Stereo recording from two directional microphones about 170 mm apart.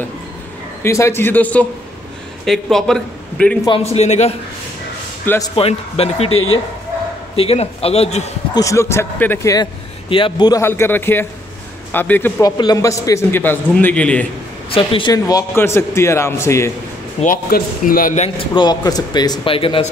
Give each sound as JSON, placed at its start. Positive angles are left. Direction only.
{"t": 0.8, "sound": "a man's voice", "side_deg": 15}
{"t": 3.8, "sound": "a man's voice", "side_deg": 40}
{"t": 5.2, "sound": "speech", "side_deg": 10}
{"t": 5.6, "sound": "a man's voice", "side_deg": 35}
{"t": 8.5, "sound": "a man's voice", "side_deg": 15}
{"t": 10.0, "sound": "speech", "side_deg": 30}
{"t": 10.7, "sound": "a man's voice", "side_deg": 10}
{"t": 14.7, "sound": "a man's voice", "side_deg": 30}
{"t": 17.2, "sound": "speech", "side_deg": 55}
{"t": 18.5, "sound": "speech", "side_deg": 25}